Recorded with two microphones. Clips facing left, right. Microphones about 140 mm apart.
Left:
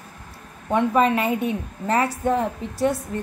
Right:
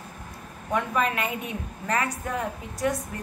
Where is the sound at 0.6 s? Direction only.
30° left (ahead or behind).